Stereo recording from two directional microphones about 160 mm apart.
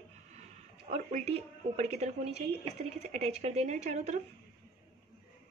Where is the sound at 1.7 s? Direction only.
45° right (ahead or behind).